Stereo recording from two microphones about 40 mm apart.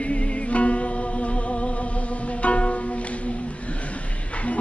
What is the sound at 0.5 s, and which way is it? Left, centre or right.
Mantra, left.